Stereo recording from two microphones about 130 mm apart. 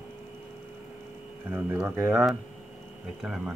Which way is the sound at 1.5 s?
15° right (ahead or behind).